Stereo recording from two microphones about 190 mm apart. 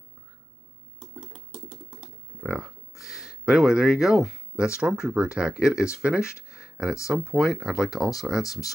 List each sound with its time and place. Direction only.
1.3 s typing: 25° right (ahead or behind)
2.4 s a sound: 5° right (ahead or behind)
4.7 s speech: 5° right (ahead or behind)
7.1 s speech: centre (ahead or behind)
8.5 s speech: 15° left (ahead or behind)